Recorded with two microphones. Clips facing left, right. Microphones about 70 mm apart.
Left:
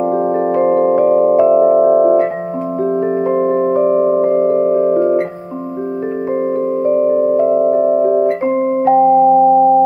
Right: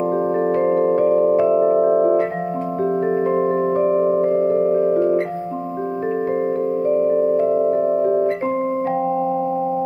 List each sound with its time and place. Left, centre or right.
0.1 s music: centre
0.6 s music: left
1.3 s music: left
1.8 s music: centre
3.3 s music: left
4.5 s music: centre
7.3 s music: centre
7.8 s vibraphone: centre